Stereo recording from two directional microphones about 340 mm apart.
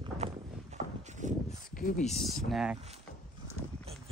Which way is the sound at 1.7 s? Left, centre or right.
Left.